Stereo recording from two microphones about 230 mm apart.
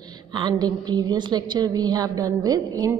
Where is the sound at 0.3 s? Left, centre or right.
Centre.